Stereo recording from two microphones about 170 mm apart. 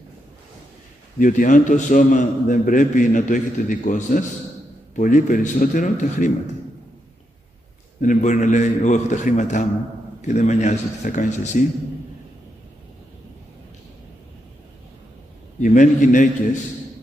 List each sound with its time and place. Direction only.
1.2 s a man's voice: 50° left (ahead or behind)
8.0 s a man's voice: 45° left (ahead or behind)
15.6 s a man's voice: 45° left (ahead or behind)